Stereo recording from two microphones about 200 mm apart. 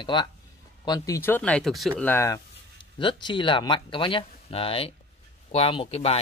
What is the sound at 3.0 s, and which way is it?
Speech, 25° left (ahead or behind).